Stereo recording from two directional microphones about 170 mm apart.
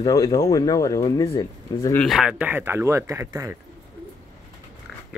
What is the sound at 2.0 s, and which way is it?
Speech, centre (ahead or behind).